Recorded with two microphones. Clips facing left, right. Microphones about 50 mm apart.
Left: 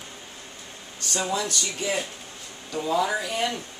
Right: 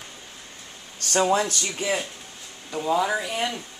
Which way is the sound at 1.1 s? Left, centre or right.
Right.